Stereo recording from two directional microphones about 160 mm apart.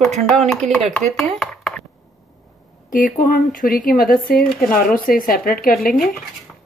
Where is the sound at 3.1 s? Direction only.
60° left (ahead or behind).